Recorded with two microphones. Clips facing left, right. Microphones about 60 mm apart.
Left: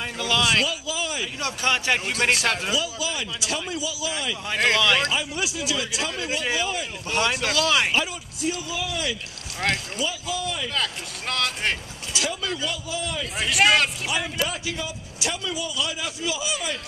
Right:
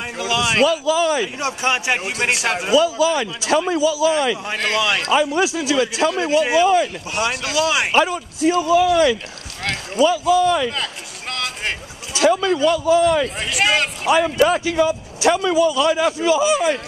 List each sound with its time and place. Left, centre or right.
0.2 s speech: centre
0.7 s speech: right
1.4 s speech: centre
2.8 s speech: right
3.6 s speech: right
4.7 s speech: centre
5.4 s a man's voice: right
6.6 s speech: right
7.1 s speech: centre
7.9 s speech: right
10.7 s speech: centre
12.1 s speech: right
13.4 s speech: centre
14.0 s a man's voice: right